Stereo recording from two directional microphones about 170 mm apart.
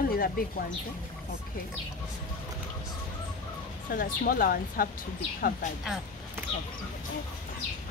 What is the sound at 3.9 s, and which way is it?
Speech, 60° left (ahead or behind).